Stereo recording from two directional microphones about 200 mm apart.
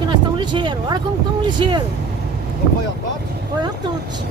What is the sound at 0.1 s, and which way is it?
Vehicle, 25° right (ahead or behind).